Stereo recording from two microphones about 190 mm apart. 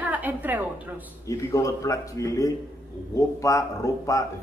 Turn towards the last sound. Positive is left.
turn(degrees=15)  # may be behind; listen again after turning